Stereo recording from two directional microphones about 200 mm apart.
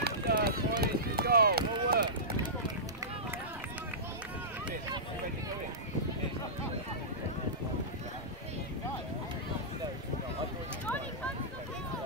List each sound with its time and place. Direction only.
0.0 s run: 50° right (ahead or behind)